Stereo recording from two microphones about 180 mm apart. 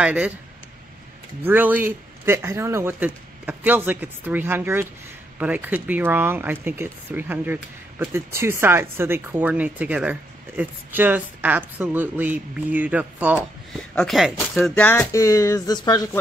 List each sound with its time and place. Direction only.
0.0 s speech: 5° right (ahead or behind)
1.4 s speech: 10° right (ahead or behind)
13.7 s speech: 5° left (ahead or behind); by 16.0 s 20° left (ahead or behind)